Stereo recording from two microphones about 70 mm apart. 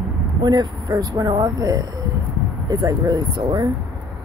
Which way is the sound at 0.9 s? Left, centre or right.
Right.